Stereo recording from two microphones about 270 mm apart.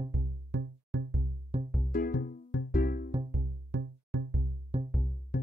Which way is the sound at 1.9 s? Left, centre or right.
Left.